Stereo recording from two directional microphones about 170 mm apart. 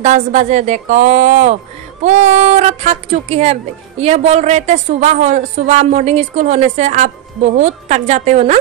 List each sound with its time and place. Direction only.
0.0 s a woman's voice: 45° right (ahead or behind)